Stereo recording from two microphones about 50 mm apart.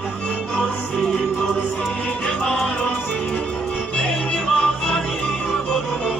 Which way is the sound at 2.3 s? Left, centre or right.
Centre.